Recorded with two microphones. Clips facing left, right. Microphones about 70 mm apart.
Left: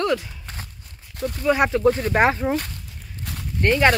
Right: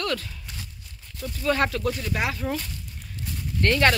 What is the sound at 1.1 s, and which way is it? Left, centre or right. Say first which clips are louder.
Speech: left 8 dB; left.